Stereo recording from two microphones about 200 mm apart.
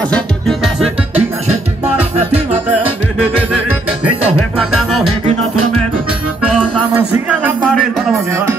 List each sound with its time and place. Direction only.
0.1 s music: centre (ahead or behind)
2.1 s music: 30° right (ahead or behind)
4.6 s music: centre (ahead or behind)
6.4 s music: 5° right (ahead or behind)